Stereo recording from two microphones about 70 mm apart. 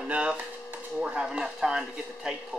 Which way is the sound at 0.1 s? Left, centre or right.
Centre.